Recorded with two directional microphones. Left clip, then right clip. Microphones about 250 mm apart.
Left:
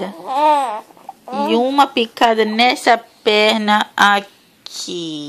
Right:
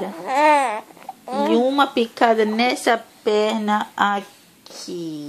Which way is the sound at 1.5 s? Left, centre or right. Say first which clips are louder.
Left 4 dB; left.